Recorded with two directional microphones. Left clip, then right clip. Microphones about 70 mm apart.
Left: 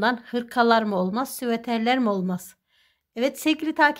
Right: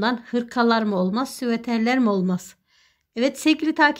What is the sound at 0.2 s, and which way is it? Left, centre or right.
Speech, centre.